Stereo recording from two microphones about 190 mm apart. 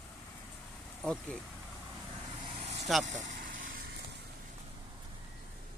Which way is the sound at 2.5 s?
35° right (ahead or behind).